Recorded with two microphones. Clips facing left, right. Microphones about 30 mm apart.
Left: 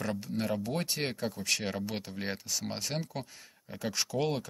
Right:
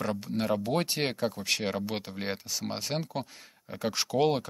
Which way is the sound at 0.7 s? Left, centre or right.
Right.